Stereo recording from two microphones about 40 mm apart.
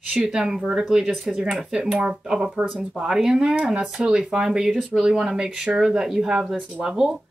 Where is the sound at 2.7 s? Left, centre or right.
Centre.